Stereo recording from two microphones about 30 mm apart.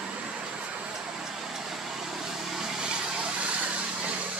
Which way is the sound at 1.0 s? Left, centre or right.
Centre.